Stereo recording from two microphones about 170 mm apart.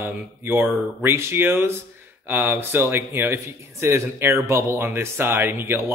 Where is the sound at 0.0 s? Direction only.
15° right (ahead or behind).